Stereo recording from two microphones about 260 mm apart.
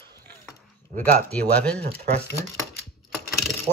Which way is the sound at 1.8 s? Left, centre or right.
Right.